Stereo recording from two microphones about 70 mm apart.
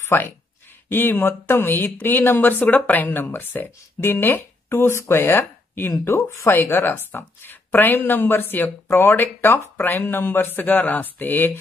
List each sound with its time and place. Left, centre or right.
0.0 s speech: left
6.6 s speech: left